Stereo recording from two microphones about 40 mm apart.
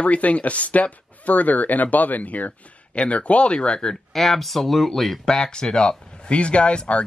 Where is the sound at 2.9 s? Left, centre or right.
Left.